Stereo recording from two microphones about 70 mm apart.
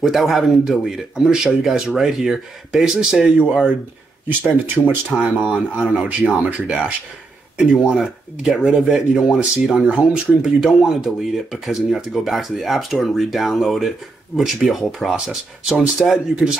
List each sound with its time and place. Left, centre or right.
0.0 s speech: centre
5.1 s speech: centre